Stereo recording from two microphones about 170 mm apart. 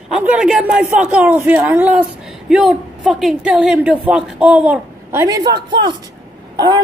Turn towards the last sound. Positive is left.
turn(degrees=-25)  # may be behind; listen again after turning